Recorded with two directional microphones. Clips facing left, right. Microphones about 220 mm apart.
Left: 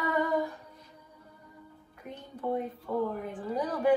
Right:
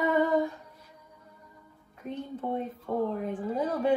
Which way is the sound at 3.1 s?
25° right (ahead or behind).